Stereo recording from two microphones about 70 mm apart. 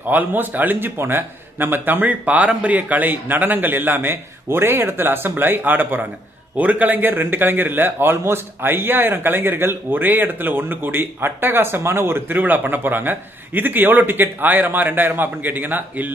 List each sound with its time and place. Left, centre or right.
0.1 s a man's voice: right